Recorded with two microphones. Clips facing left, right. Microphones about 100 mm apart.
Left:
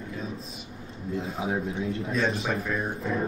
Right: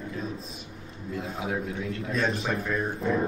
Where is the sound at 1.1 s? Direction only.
Centre (ahead or behind).